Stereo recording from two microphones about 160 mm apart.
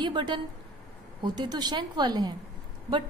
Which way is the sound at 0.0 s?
30° right (ahead or behind).